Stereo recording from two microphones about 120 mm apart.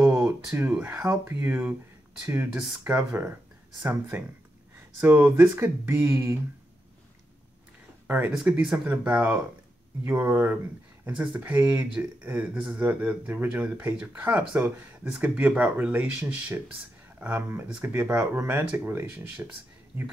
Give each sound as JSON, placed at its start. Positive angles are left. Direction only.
{"t": 0.6, "sound": "speech", "side_deg": -15}
{"t": 8.3, "sound": "speech", "side_deg": -5}